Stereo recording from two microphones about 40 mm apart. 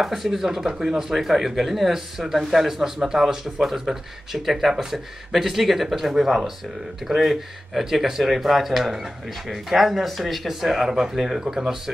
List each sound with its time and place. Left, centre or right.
0.0 s speech: centre
11.4 s speech: right